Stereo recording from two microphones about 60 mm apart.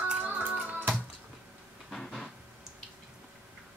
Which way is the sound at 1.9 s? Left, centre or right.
Centre.